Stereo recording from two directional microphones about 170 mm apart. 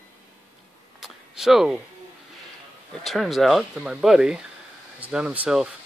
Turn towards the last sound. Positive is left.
turn(degrees=-5)  # may be behind; listen again after turning